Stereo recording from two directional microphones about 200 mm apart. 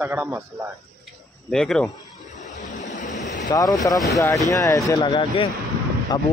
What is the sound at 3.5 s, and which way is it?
Speech, 15° left (ahead or behind).